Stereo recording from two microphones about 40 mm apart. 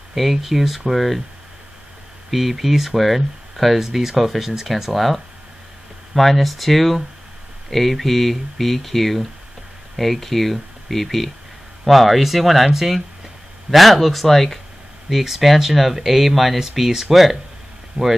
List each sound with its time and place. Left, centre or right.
0.1 s speech: centre
2.3 s speech: centre
17.9 s speech: right